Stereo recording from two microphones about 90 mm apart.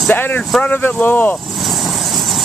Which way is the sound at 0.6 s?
15° left (ahead or behind).